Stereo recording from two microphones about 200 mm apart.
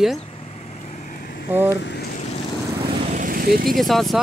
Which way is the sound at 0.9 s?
45° left (ahead or behind).